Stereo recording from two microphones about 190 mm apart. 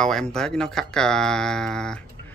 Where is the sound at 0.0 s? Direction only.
Centre (ahead or behind).